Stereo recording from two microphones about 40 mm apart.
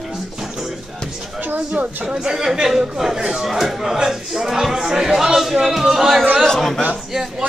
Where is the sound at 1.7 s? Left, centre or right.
Right.